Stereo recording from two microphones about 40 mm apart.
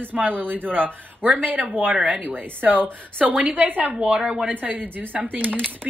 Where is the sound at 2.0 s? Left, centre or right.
Right.